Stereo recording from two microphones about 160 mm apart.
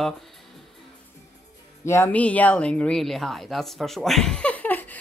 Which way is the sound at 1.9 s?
10° left (ahead or behind).